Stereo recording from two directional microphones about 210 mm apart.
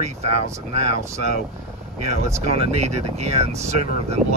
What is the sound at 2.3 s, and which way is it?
Speech, 30° right (ahead or behind).